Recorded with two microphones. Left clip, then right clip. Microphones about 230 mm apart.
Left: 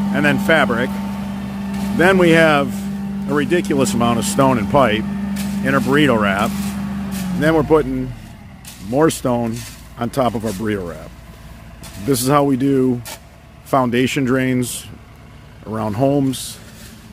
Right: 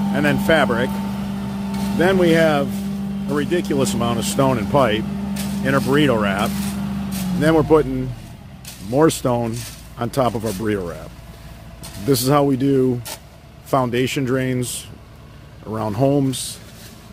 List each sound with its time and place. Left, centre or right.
0.0 s vehicle: centre
2.0 s speech: left
15.7 s speech: centre